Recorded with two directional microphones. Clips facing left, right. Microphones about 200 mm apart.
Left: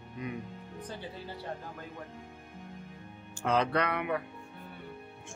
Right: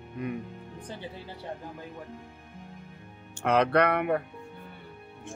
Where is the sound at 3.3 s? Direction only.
65° right (ahead or behind).